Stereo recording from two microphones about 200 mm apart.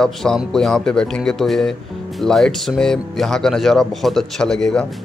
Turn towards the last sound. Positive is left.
turn(degrees=5)  # may be behind; listen again after turning